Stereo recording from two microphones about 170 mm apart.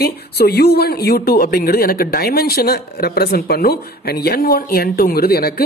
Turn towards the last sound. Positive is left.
turn(degrees=65)  # may be behind; listen again after turning